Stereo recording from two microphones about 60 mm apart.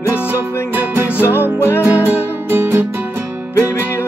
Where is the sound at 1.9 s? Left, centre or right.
Right.